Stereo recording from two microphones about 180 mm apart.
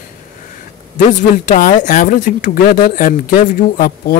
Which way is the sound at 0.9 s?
45° left (ahead or behind).